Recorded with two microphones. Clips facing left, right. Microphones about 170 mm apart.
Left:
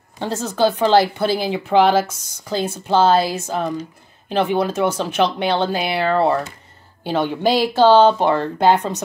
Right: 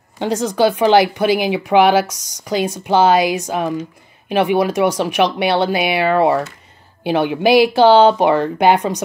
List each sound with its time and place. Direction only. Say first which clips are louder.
0.2 s speech: right 3 dB; 15° right (ahead or behind)
7.4 s speech: right 7 dB; 70° right (ahead or behind)
7.8 s speech: left 1 dB; 15° right (ahead or behind)